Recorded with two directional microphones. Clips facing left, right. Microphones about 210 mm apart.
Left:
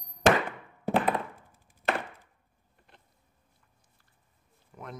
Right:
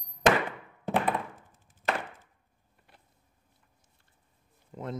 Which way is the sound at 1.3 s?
10° left (ahead or behind).